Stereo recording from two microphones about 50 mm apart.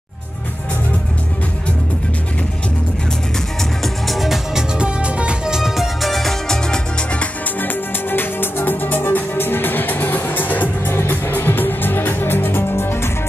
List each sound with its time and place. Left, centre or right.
3.8 s music: centre
4.7 s music: right
5.8 s music: centre
6.7 s music: left
7.6 s music: left